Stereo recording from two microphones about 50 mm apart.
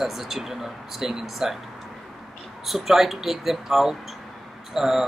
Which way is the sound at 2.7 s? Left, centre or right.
Centre.